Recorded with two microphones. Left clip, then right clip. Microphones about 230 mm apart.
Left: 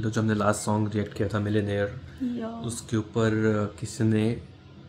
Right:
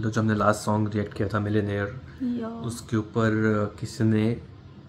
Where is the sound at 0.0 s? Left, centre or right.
Centre.